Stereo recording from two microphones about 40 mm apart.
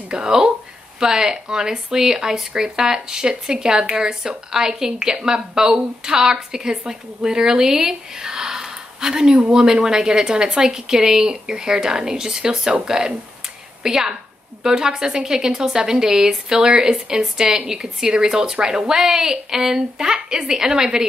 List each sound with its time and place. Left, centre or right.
0.1 s speech: centre